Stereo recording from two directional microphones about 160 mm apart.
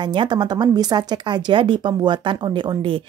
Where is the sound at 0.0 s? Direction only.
30° right (ahead or behind).